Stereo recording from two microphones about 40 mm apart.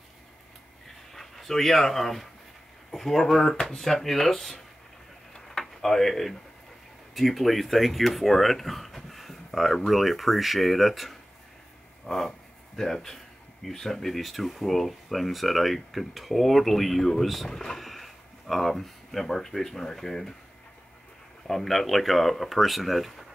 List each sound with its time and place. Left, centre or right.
1.1 s speech: centre
3.5 s speech: left
3.8 s speech: centre
5.3 s a sound: centre
5.8 s speech: centre
12.1 s speech: centre
17.5 s speech: centre
17.7 s speech: centre
21.5 s speech: centre